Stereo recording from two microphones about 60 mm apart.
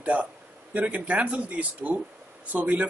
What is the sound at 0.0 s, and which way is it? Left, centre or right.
Speech, right.